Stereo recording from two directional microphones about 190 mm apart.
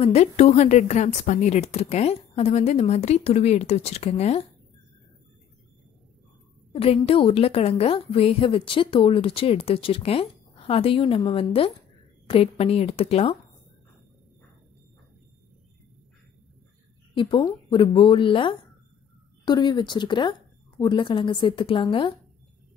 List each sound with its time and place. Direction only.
0.0 s a woman's voice: 35° left (ahead or behind)
6.7 s a woman's voice: 30° left (ahead or behind)
17.1 s a woman's voice: 25° left (ahead or behind)